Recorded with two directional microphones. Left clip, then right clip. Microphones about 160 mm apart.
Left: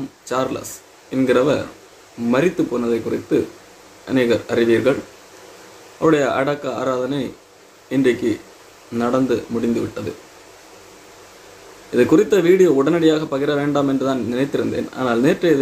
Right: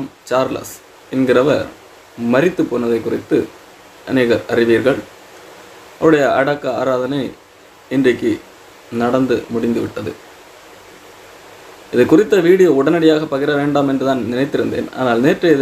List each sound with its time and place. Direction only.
0.3 s speech: 5° right (ahead or behind)
5.9 s speech: centre (ahead or behind)
11.9 s speech: 5° right (ahead or behind)